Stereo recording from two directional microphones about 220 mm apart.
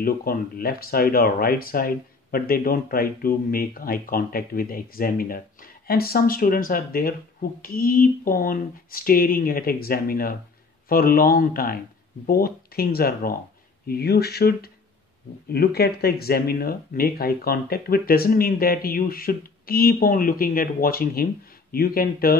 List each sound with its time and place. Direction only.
0.0 s speech: 40° left (ahead or behind)